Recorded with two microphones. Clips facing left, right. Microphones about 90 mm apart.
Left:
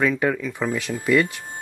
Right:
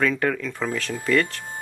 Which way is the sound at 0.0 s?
10° left (ahead or behind).